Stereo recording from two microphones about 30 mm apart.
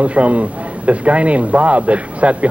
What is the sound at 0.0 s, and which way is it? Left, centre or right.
A man's voice, right.